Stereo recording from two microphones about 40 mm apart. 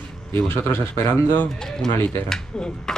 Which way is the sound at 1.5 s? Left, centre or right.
Centre.